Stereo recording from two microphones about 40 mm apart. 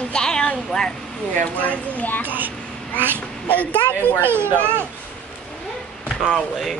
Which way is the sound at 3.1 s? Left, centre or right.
Left.